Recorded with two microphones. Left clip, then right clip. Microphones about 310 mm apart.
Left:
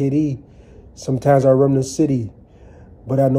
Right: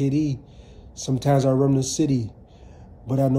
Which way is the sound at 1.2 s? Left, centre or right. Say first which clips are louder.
Left 7 dB; centre.